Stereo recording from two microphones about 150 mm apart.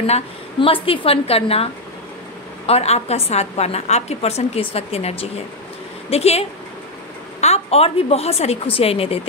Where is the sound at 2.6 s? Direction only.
45° left (ahead or behind).